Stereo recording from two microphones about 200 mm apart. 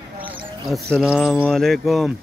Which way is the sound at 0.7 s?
Centre (ahead or behind).